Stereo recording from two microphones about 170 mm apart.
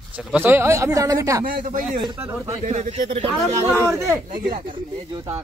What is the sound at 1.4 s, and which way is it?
Speech, 55° right (ahead or behind).